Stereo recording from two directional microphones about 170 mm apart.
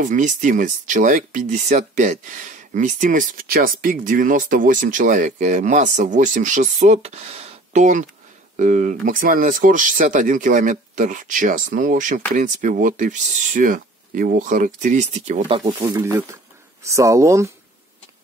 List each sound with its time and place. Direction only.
0.0 s speech: 50° right (ahead or behind)
15.4 s speech: 30° right (ahead or behind)
15.8 s speech: 15° right (ahead or behind)